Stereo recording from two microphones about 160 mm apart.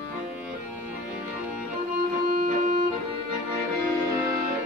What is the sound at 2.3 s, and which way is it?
Music, 55° right (ahead or behind).